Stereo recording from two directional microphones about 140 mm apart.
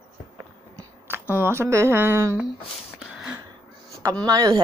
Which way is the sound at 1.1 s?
15° right (ahead or behind).